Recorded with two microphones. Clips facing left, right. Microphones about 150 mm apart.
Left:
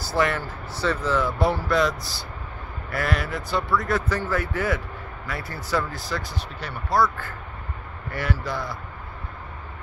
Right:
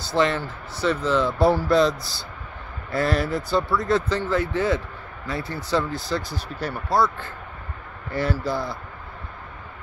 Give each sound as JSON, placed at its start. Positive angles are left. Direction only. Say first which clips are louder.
{"t": 0.0, "sound": "speech", "louder": "right 2 dB", "side_deg": -20}
{"t": 1.4, "sound": "speech", "louder": "right 6 dB", "side_deg": -30}
{"t": 6.5, "sound": "speech", "louder": "right 5 dB", "side_deg": -40}
{"t": 6.9, "sound": "speech", "louder": "even", "side_deg": -25}